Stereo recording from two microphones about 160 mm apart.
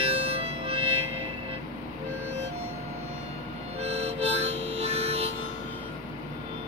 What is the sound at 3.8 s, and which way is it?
Harmonica, 40° right (ahead or behind).